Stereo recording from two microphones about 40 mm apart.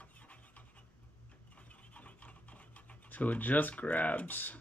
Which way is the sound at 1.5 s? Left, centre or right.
Left.